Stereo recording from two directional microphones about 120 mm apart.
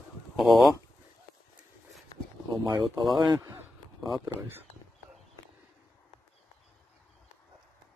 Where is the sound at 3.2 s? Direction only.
30° right (ahead or behind).